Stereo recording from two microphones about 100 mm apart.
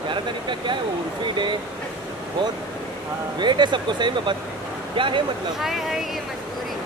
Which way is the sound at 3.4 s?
50° right (ahead or behind).